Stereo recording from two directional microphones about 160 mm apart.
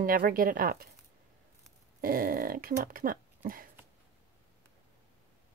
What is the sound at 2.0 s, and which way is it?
Speech, 65° right (ahead or behind).